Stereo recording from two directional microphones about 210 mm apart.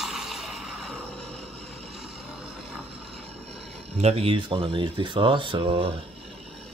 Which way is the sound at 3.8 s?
30° right (ahead or behind).